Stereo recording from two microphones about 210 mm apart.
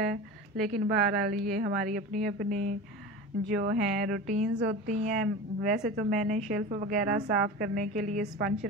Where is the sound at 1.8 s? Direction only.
40° right (ahead or behind).